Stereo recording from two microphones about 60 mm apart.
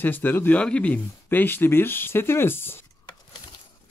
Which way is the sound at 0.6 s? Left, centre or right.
Centre.